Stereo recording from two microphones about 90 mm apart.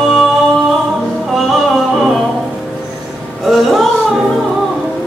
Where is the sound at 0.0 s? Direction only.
Centre (ahead or behind).